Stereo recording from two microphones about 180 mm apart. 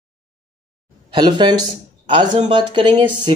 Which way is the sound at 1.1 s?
25° right (ahead or behind).